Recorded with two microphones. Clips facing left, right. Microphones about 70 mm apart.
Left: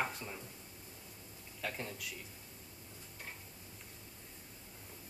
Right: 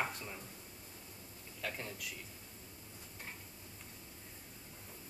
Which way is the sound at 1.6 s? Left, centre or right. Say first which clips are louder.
Left 1 dB; centre.